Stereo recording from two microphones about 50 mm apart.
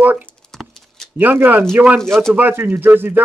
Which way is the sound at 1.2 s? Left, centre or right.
Right.